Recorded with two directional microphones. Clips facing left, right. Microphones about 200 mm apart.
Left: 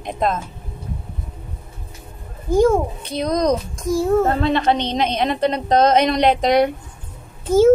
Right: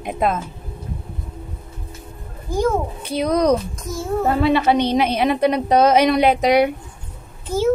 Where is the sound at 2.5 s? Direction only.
25° left (ahead or behind).